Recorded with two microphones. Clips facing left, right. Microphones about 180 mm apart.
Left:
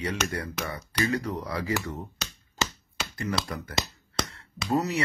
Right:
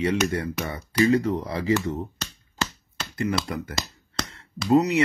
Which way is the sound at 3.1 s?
25° right (ahead or behind).